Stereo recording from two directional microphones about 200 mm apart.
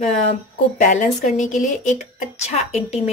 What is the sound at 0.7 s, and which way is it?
A woman's voice, 40° left (ahead or behind).